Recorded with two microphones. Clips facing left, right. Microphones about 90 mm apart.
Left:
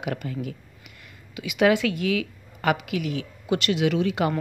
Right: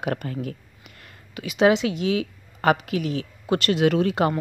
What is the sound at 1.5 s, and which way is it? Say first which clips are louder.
Speech: right 1 dB; 25° right (ahead or behind).